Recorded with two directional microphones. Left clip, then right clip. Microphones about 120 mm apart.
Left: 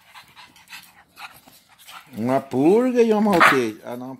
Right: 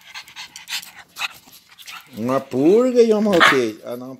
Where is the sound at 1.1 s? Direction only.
40° right (ahead or behind).